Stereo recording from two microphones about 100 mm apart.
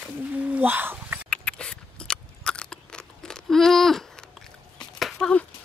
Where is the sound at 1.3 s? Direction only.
10° left (ahead or behind).